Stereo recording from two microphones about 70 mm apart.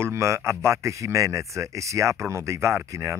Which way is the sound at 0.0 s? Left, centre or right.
Right.